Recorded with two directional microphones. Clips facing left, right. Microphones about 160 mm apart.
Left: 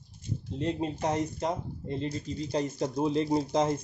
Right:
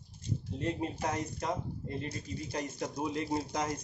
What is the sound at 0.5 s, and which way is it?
Speech, 25° left (ahead or behind).